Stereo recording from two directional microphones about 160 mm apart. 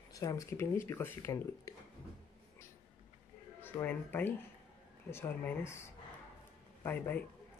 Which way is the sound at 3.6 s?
10° left (ahead or behind).